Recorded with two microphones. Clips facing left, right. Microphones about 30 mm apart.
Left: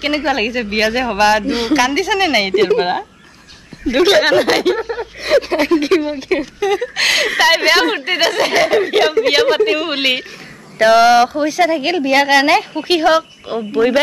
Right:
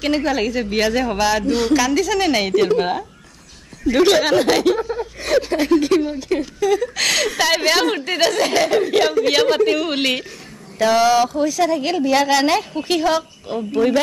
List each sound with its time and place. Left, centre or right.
0.0 s speech: left
10.8 s speech: left